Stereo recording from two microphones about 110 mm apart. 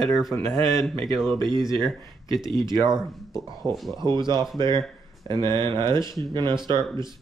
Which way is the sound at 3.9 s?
45° right (ahead or behind).